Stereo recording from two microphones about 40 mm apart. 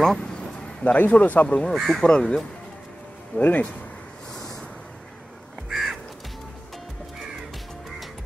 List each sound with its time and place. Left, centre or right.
0.0 s a sound: centre
0.9 s speech: left
1.7 s speech: centre
3.3 s speech: left
5.7 s crow: centre